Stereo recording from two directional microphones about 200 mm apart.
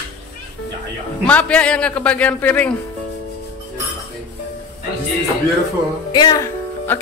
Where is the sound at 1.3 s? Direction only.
5° left (ahead or behind).